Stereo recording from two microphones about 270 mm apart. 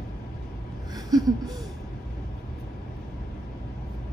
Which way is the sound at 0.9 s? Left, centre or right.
Centre.